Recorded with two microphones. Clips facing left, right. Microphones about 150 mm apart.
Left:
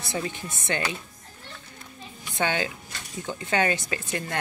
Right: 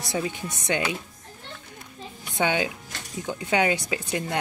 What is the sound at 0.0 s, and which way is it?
Speech, 15° right (ahead or behind).